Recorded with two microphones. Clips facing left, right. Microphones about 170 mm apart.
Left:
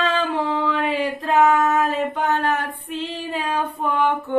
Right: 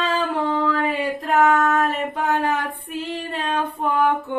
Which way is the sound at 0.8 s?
90° left.